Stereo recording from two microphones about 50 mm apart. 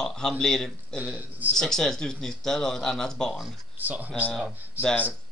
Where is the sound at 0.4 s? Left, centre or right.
Centre.